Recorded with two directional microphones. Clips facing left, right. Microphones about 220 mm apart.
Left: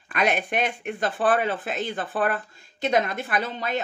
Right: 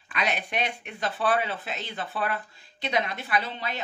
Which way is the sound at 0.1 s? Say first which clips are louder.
Left 5 dB; 50° left (ahead or behind).